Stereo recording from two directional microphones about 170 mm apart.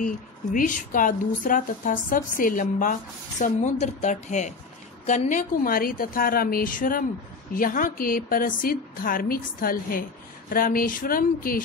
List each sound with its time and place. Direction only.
0.0 s a woman's voice: 50° left (ahead or behind)